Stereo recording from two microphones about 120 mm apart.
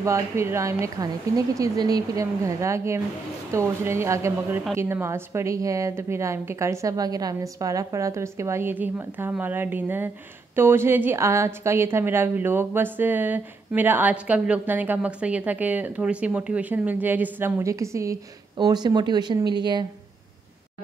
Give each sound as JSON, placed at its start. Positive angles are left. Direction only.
{"t": 0.0, "sound": "a woman's voice", "side_deg": -25}
{"t": 18.6, "sound": "speech", "side_deg": -35}